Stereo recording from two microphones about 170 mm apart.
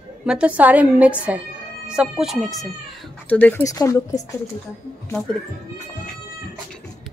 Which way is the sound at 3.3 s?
10° left (ahead or behind).